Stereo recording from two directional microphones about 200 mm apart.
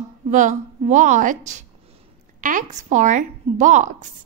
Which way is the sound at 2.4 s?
40° right (ahead or behind).